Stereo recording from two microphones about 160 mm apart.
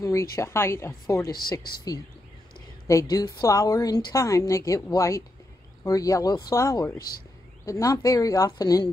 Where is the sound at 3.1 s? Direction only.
20° left (ahead or behind).